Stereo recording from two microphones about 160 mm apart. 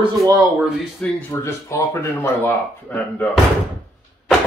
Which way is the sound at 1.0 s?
15° left (ahead or behind).